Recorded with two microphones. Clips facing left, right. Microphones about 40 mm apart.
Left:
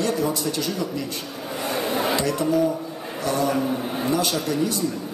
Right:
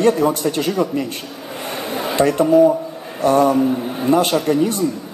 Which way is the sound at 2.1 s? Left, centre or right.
Right.